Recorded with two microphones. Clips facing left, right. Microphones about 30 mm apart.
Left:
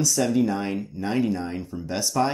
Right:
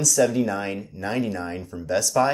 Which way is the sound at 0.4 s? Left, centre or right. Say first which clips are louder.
Left 1 dB; right.